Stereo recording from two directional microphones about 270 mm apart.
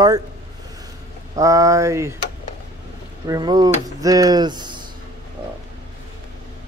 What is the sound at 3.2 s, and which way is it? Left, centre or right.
Speech, centre.